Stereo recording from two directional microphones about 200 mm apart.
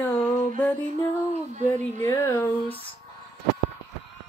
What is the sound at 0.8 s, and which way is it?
Female singing, 35° right (ahead or behind).